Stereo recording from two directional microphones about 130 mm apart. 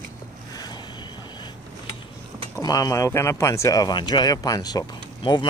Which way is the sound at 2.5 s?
30° left (ahead or behind).